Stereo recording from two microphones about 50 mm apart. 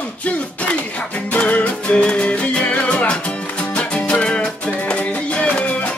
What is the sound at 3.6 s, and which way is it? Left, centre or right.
Music, left.